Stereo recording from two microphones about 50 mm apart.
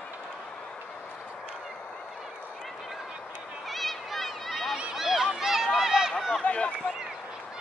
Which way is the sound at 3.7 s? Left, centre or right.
Centre.